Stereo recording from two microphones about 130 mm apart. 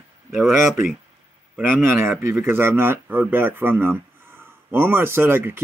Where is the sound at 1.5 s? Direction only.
15° right (ahead or behind).